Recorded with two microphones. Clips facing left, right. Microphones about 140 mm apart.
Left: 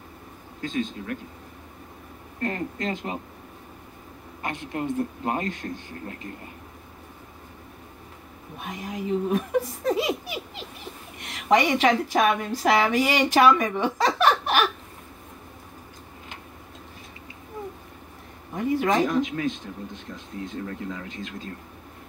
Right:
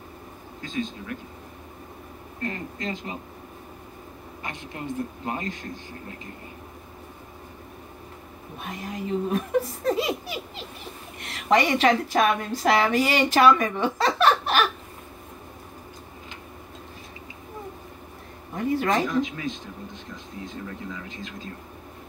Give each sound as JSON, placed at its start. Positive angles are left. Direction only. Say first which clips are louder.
{"t": 0.6, "sound": "speech", "louder": "left 2 dB", "side_deg": 50}
{"t": 2.4, "sound": "speech", "louder": "left 3 dB", "side_deg": 50}
{"t": 4.4, "sound": "speech", "louder": "left 6 dB", "side_deg": 50}
{"t": 8.6, "sound": "a woman's voice", "louder": "left 2 dB", "side_deg": 15}
{"t": 18.7, "sound": "speech", "louder": "left 1 dB", "side_deg": 15}
{"t": 19.0, "sound": "speech", "louder": "left 2 dB", "side_deg": 50}
{"t": 20.6, "sound": "speech", "louder": "left 3 dB", "side_deg": 50}